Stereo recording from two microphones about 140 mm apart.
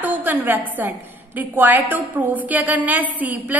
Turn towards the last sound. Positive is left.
turn(degrees=-10)  # may be behind; listen again after turning